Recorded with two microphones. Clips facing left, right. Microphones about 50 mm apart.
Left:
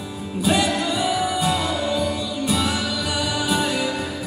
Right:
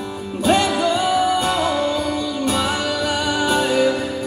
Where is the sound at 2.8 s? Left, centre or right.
Centre.